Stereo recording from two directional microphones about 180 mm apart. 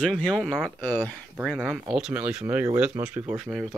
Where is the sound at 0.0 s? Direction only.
Centre (ahead or behind).